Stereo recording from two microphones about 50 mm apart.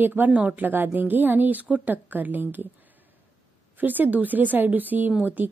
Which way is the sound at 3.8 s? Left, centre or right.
Right.